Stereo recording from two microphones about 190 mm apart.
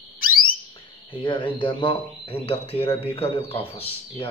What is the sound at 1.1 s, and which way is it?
Speech, 25° left (ahead or behind).